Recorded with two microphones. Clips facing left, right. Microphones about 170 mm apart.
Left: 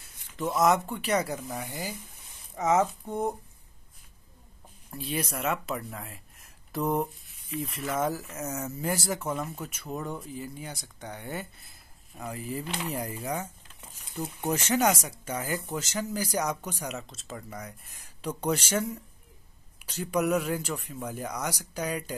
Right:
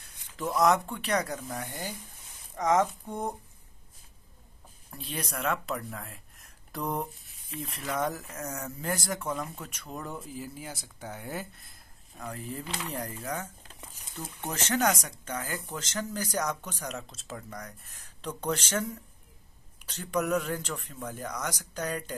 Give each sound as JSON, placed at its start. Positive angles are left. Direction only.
{"t": 0.0, "sound": "speech", "side_deg": 0}
{"t": 4.9, "sound": "speech", "side_deg": 5}
{"t": 17.0, "sound": "speech", "side_deg": 0}